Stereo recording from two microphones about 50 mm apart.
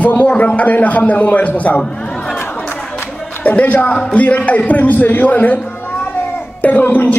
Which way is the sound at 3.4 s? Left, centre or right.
Left.